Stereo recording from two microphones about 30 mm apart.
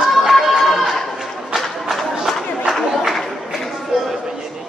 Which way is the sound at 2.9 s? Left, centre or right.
Centre.